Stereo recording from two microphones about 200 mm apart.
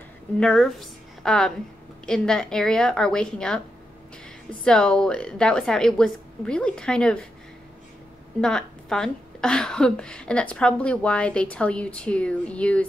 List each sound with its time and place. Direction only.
0.4 s a woman's voice: centre (ahead or behind)
8.4 s a woman's voice: 5° left (ahead or behind)